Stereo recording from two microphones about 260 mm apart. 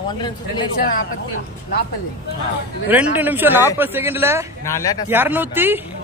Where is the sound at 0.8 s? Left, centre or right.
Left.